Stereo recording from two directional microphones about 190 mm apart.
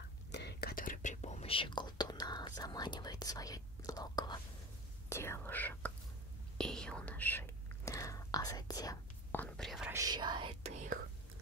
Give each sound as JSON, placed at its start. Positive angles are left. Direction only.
{"t": 0.3, "sound": "whispering", "side_deg": 60}
{"t": 5.1, "sound": "speech", "side_deg": 15}
{"t": 6.6, "sound": "whispering", "side_deg": 5}
{"t": 9.8, "sound": "whispering", "side_deg": -20}